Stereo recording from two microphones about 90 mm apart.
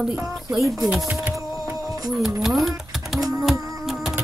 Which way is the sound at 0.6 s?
35° right (ahead or behind).